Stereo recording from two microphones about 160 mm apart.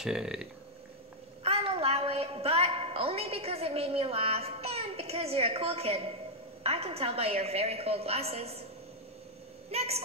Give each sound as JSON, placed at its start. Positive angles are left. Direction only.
{"t": 0.0, "sound": "speech", "side_deg": -5}
{"t": 1.4, "sound": "a woman's voice", "side_deg": -40}
{"t": 9.7, "sound": "a woman's voice", "side_deg": -40}